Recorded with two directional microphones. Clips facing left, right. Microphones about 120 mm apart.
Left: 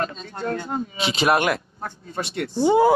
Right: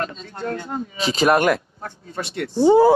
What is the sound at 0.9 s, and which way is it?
Speech, 40° right (ahead or behind).